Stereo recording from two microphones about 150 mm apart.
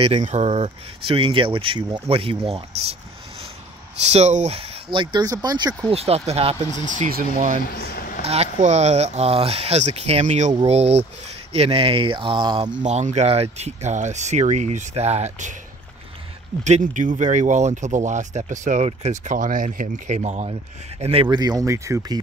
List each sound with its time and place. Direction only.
0.0 s speech: 50° right (ahead or behind)
4.1 s speech: 50° right (ahead or behind); by 5.9 s 25° right (ahead or behind)
5.9 s speech: 45° right (ahead or behind)
6.8 s speech: 55° right (ahead or behind)
7.7 s a sound: 85° left
8.2 s speech: 45° right (ahead or behind)
12.8 s speech: 50° right (ahead or behind)
16.6 s speech: 55° right (ahead or behind)
21.0 s speech: 40° right (ahead or behind)
21.4 s speech: 25° right (ahead or behind)